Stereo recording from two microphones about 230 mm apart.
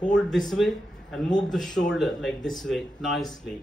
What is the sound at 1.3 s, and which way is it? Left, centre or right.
Speech, centre.